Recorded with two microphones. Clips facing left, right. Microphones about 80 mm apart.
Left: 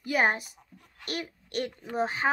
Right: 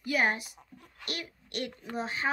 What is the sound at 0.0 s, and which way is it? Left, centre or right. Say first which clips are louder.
Speech: left 3 dB; left.